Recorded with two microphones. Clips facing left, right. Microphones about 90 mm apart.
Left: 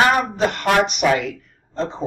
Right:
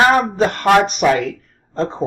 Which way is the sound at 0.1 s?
35° right (ahead or behind).